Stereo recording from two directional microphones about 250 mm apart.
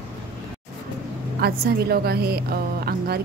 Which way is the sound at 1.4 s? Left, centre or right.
Right.